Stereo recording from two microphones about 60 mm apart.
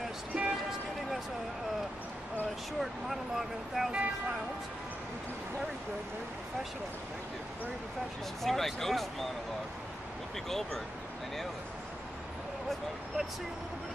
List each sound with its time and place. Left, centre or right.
0.3 s a sound: centre
2.8 s vehicle: centre
8.4 s speech: centre